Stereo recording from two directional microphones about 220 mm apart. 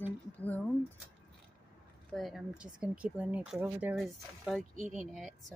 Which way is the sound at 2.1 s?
Centre (ahead or behind).